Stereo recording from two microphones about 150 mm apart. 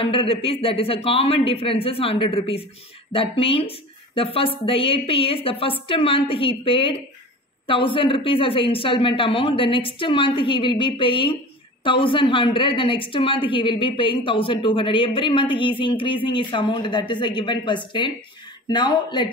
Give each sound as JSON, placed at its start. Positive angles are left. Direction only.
{"t": 0.0, "sound": "a woman's voice", "side_deg": 35}